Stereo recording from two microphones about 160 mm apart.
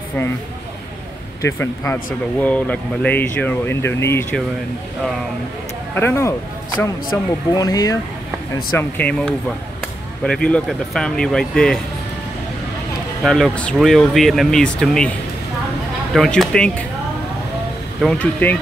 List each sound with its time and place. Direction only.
1.4 s speech: 15° left (ahead or behind)
5.9 s speech: 15° left (ahead or behind)
7.5 s speech: 25° left (ahead or behind)
8.7 s speech: 10° left (ahead or behind)
13.2 s speech: 5° left (ahead or behind)
18.0 s speech: 10° left (ahead or behind)